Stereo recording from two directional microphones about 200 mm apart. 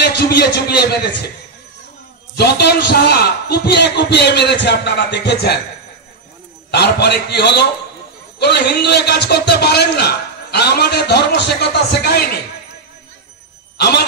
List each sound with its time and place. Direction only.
0.0 s a man's voice: 55° left (ahead or behind)
2.3 s a man's voice: 55° left (ahead or behind)
6.7 s a man's voice: 55° left (ahead or behind)
13.7 s speech: 55° left (ahead or behind)